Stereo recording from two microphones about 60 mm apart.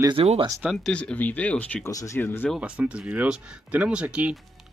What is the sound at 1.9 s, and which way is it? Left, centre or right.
Speech, left.